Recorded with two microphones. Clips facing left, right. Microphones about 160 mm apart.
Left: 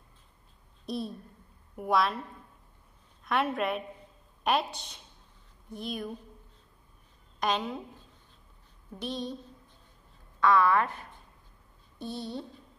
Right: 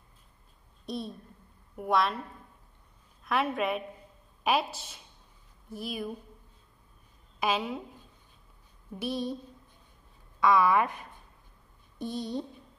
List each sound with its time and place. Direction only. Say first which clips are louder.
0.8 s a woman's voice: left 2 dB; centre (ahead or behind)
3.3 s a woman's voice: even; centre (ahead or behind)
7.3 s a woman's voice: right 1 dB; 5° right (ahead or behind)
8.9 s a woman's voice: right 3 dB; 10° right (ahead or behind)
10.4 s a woman's voice: even; 10° right (ahead or behind)